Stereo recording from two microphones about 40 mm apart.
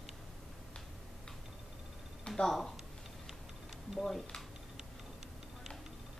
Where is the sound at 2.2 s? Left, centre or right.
Centre.